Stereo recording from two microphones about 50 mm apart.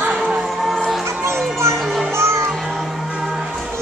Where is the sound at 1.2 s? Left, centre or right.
Right.